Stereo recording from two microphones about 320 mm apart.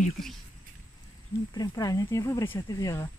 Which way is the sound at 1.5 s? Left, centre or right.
Centre.